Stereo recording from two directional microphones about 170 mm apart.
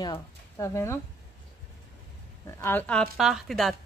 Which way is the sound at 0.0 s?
20° left (ahead or behind).